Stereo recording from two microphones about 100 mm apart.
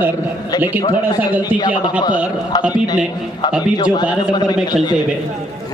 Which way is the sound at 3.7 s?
45° left (ahead or behind).